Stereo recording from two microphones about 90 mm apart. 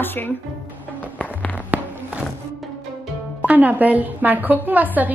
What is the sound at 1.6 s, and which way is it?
Walk, 15° right (ahead or behind).